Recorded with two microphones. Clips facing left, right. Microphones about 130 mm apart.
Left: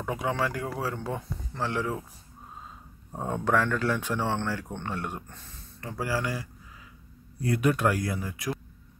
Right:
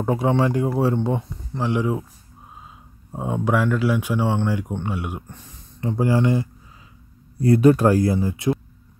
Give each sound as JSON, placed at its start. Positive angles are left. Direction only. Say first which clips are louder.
{"t": 0.0, "sound": "speech", "louder": "right 9 dB", "side_deg": -30}
{"t": 3.1, "sound": "speech", "louder": "right 4 dB", "side_deg": -10}